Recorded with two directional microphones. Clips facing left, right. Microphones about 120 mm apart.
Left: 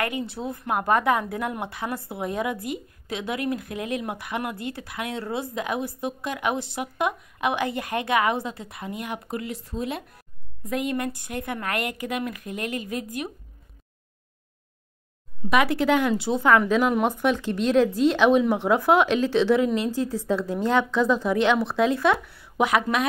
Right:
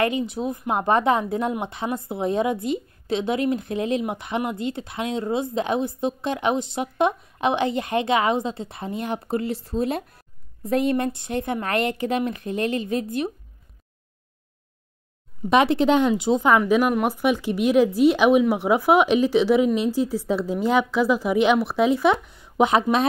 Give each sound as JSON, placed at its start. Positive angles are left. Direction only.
{"t": 0.0, "sound": "speech", "side_deg": -20}
{"t": 15.5, "sound": "a woman's voice", "side_deg": -25}